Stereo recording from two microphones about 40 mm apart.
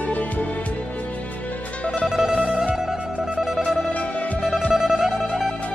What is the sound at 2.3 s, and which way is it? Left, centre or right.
Music, right.